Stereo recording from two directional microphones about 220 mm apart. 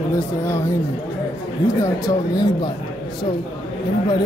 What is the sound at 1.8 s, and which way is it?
Speech, 15° left (ahead or behind).